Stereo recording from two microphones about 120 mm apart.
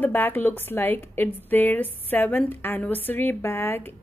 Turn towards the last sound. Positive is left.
turn(degrees=15)  # may be behind; listen again after turning